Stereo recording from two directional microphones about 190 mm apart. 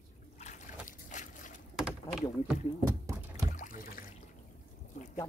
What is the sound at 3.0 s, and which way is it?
Rowboat, 15° right (ahead or behind).